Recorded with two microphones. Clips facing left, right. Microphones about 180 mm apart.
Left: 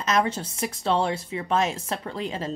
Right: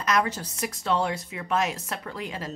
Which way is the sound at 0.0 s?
25° left (ahead or behind).